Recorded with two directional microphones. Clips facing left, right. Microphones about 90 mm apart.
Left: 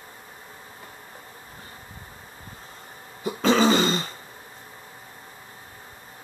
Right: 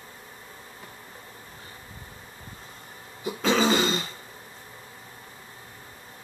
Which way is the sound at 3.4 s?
40° left (ahead or behind).